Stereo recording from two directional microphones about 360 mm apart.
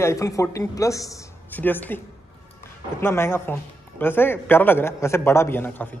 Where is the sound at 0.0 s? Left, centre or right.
Centre.